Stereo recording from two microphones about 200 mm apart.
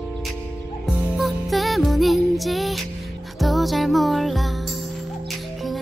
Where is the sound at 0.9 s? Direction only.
Centre (ahead or behind).